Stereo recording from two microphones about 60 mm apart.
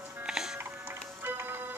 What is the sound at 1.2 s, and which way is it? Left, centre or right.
Music, right.